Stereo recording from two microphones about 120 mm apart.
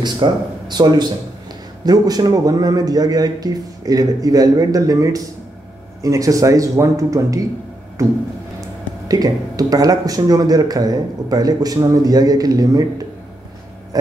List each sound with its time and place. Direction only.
0.0 s speech: 35° right (ahead or behind)